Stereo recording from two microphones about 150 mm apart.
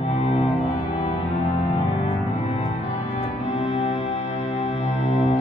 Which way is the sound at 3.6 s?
40° left (ahead or behind).